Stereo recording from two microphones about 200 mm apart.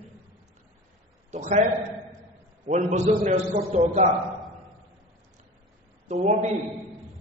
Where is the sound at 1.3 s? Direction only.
35° right (ahead or behind).